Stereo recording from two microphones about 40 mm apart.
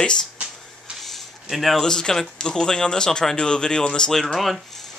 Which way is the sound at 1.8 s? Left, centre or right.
Centre.